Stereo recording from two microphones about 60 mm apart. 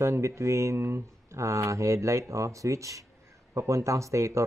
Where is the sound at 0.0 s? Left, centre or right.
Right.